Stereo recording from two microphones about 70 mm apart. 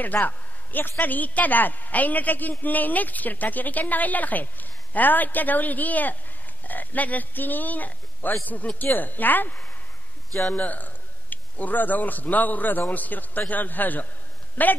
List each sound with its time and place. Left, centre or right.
0.0 s a woman's voice: left